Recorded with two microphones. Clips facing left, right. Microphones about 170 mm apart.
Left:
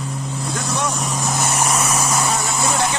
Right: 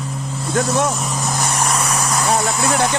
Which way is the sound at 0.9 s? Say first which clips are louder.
Even; centre (ahead or behind).